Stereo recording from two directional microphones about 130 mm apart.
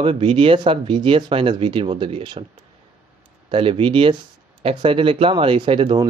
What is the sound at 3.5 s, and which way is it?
Speech, 45° right (ahead or behind).